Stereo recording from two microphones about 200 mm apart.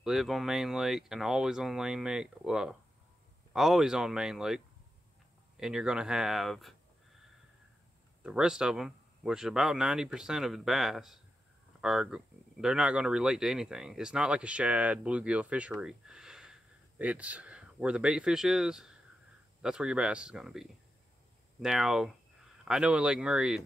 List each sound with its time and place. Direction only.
0.0 s speech: centre (ahead or behind)
8.2 s speech: 5° right (ahead or behind)